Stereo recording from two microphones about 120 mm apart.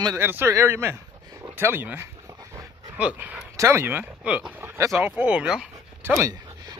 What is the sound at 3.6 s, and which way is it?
Speech, 20° right (ahead or behind).